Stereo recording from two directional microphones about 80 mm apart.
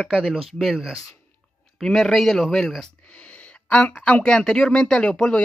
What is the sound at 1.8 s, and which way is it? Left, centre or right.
Speech, centre.